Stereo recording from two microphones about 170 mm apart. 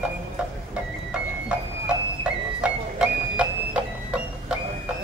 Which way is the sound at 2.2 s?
5° right (ahead or behind).